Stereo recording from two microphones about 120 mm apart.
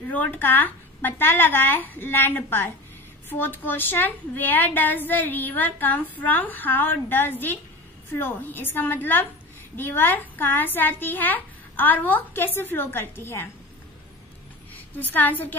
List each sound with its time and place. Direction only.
0.1 s a woman's voice: 15° left (ahead or behind)
15.0 s a woman's voice: 15° left (ahead or behind)